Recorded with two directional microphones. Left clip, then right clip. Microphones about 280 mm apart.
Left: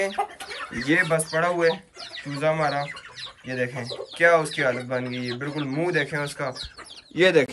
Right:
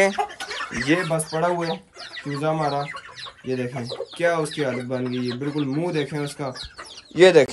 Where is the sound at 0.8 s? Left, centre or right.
Centre.